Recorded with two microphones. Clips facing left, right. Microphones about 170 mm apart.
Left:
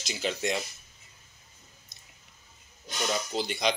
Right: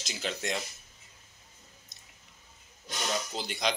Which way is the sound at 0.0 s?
Centre (ahead or behind).